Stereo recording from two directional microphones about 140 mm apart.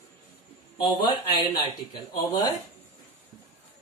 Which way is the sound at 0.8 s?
35° left (ahead or behind).